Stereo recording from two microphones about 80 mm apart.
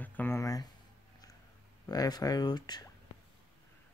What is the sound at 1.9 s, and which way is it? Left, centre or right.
Speech, left.